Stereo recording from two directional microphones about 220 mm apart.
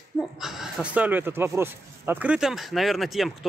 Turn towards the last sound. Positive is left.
turn(degrees=0)  # may be behind; listen again after turning